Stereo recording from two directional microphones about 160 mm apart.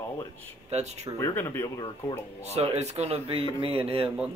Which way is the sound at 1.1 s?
15° left (ahead or behind).